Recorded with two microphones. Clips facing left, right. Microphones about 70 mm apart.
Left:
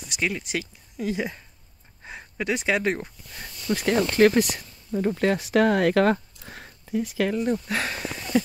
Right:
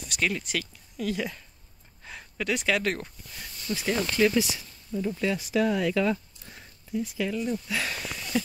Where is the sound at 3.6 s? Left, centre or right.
Left.